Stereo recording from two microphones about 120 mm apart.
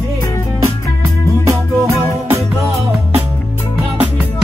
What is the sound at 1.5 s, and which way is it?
Music, 25° right (ahead or behind).